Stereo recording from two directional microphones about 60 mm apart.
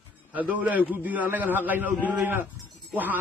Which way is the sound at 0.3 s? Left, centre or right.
Right.